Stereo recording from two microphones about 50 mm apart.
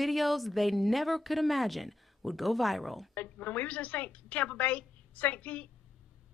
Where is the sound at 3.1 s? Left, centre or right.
Left.